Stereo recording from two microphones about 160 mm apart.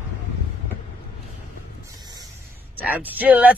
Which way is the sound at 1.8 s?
25° right (ahead or behind).